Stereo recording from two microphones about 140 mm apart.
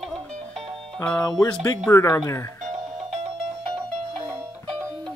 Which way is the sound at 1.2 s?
25° left (ahead or behind).